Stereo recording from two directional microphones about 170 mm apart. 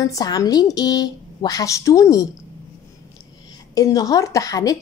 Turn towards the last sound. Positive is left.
turn(degrees=20)  # may be behind; listen again after turning